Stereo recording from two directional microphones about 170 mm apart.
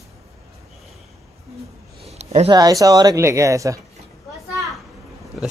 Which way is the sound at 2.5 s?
20° right (ahead or behind).